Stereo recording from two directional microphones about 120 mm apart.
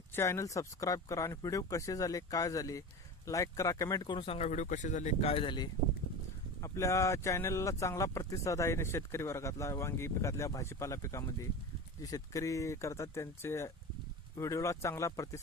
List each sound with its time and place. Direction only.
0.1 s speech: 25° left (ahead or behind); by 4.4 s 45° left (ahead or behind)
4.4 s speech: 85° left
5.2 s speech: 50° left (ahead or behind)
6.6 s speech: 25° left (ahead or behind)